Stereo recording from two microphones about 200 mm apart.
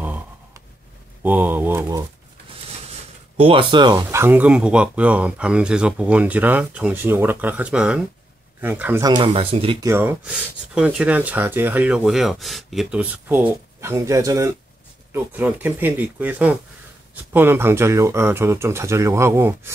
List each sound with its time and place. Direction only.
1.2 s speech: 10° right (ahead or behind)
2.9 s speech: 30° right (ahead or behind); by 9.0 s 10° right (ahead or behind)
9.0 s speech: 25° right (ahead or behind)
9.8 s speech: 10° right (ahead or behind)